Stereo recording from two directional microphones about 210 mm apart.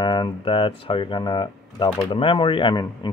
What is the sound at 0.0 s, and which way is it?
Speech, 25° left (ahead or behind).